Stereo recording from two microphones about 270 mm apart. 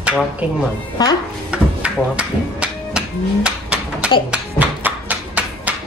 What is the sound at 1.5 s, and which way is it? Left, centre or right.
Music, centre.